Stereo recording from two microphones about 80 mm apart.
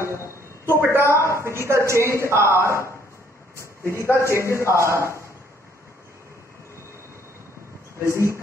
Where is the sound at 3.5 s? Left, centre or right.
Left.